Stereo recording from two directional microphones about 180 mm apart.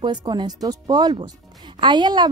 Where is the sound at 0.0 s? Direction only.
25° right (ahead or behind).